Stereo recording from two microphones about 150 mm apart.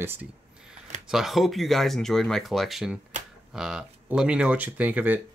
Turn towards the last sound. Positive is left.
turn(degrees=-10)  # may be behind; listen again after turning